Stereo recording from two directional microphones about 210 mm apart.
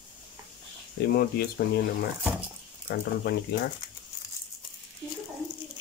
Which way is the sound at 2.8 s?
50° left (ahead or behind).